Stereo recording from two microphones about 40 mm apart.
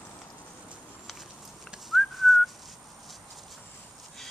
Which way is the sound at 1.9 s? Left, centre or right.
Centre.